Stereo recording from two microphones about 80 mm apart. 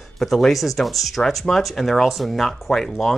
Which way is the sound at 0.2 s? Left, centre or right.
Centre.